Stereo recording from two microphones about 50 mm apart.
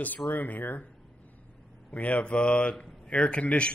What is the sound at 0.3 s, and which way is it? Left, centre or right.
Speech, left.